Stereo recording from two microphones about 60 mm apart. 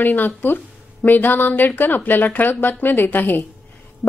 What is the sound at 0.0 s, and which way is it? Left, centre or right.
Speech, left.